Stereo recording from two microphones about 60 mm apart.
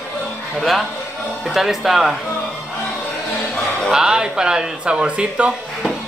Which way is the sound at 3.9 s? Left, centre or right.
Centre.